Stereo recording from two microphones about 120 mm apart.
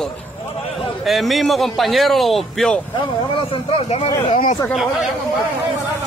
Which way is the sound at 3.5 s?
50° left (ahead or behind).